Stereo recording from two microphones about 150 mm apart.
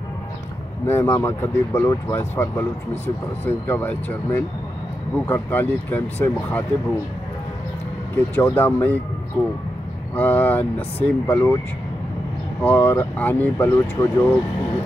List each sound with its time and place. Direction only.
0.8 s speech: 20° left (ahead or behind)
8.4 s speech: 10° left (ahead or behind)
12.6 s speech: 15° left (ahead or behind)